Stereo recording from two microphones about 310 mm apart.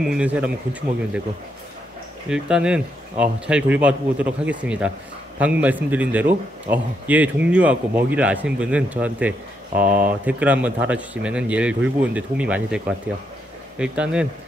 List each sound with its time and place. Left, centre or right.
0.0 s a man's voice: centre
2.2 s a man's voice: centre
9.8 s speech: right
10.2 s a man's voice: centre